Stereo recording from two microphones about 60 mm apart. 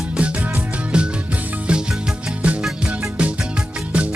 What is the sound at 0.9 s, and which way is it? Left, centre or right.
Music, centre.